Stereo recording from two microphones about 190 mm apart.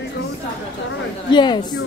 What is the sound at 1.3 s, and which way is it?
Speech, 25° left (ahead or behind).